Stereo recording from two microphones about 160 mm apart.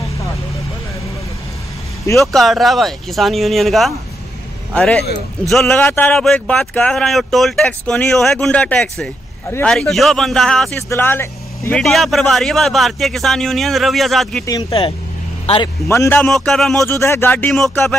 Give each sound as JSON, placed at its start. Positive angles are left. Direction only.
{"t": 2.1, "sound": "speech", "side_deg": 0}
{"t": 11.8, "sound": "speech", "side_deg": 0}
{"t": 14.4, "sound": "speech", "side_deg": 20}
{"t": 14.7, "sound": "a man's voice", "side_deg": 35}
{"t": 15.9, "sound": "speech", "side_deg": 15}
{"t": 16.3, "sound": "speech", "side_deg": 0}
{"t": 16.8, "sound": "speech", "side_deg": 15}